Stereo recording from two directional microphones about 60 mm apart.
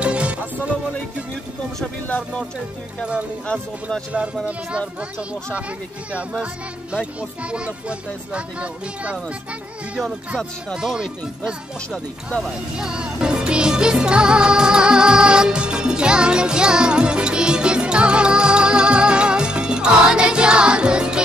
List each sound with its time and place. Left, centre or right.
0.0 s music: right
2.0 s speech: left
7.2 s speech: centre
10.7 s speech: centre
12.4 s music: centre